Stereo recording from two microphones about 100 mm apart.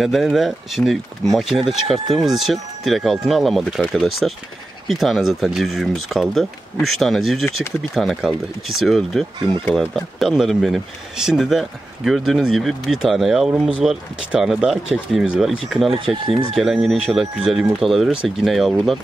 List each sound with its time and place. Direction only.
0.0 s speech: centre (ahead or behind)